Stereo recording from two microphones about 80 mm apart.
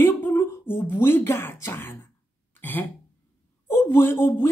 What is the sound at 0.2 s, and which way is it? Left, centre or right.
Speech, left.